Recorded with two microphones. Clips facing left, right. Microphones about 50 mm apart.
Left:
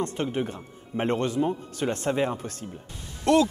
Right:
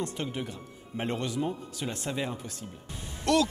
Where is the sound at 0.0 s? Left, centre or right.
Left.